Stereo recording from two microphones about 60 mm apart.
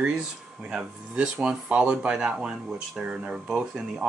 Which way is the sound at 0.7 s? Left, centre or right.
Centre.